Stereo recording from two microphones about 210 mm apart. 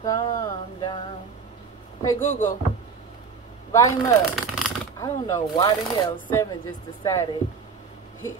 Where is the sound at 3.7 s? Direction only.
15° left (ahead or behind).